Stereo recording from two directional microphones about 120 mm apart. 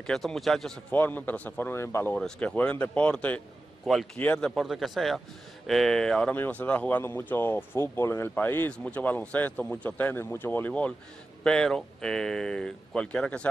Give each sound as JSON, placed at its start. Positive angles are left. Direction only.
{"t": 0.0, "sound": "speech", "side_deg": 5}
{"t": 0.9, "sound": "speech", "side_deg": 15}
{"t": 2.1, "sound": "speech", "side_deg": 5}
{"t": 3.8, "sound": "speech", "side_deg": 0}
{"t": 4.2, "sound": "speech", "side_deg": 15}
{"t": 4.5, "sound": "speech", "side_deg": 0}